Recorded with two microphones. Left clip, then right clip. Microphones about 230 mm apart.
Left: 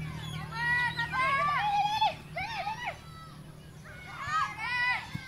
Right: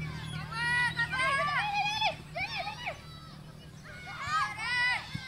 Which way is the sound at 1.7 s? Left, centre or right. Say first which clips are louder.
Left 3 dB; right.